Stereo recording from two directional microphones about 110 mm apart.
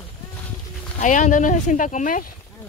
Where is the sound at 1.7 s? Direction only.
90° left.